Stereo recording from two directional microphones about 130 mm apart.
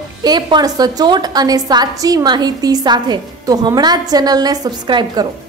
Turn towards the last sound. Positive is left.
turn(degrees=-35)  # may be behind; listen again after turning